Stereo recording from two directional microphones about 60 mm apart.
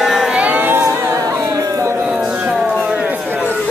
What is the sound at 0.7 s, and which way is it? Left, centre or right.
Music, right.